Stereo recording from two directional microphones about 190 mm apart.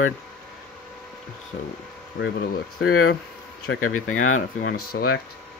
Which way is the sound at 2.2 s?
55° left (ahead or behind).